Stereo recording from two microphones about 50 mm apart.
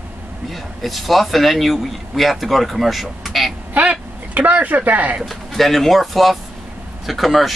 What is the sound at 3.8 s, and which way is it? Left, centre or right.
Speech, right.